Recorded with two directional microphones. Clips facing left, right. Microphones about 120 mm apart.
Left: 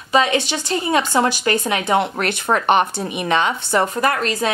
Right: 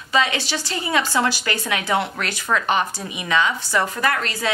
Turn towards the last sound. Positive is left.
turn(degrees=20)  # may be behind; listen again after turning